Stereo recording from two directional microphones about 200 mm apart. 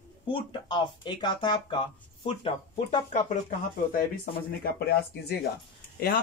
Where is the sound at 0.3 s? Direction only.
25° left (ahead or behind).